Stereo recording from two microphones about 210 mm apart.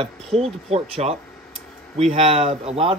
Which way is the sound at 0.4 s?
30° right (ahead or behind).